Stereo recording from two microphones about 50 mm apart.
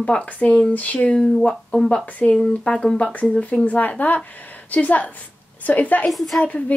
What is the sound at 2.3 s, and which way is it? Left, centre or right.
A woman's voice, centre.